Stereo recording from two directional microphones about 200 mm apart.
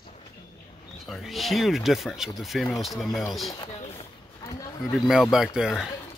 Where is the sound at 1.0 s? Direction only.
Centre (ahead or behind).